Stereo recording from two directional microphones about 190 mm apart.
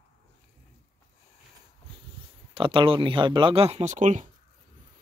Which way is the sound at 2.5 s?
25° right (ahead or behind).